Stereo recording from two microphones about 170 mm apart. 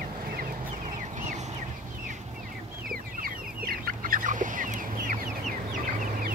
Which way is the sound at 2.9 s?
55° right (ahead or behind).